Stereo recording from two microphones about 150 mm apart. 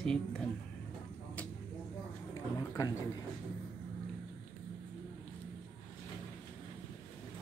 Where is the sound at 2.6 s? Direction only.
20° left (ahead or behind).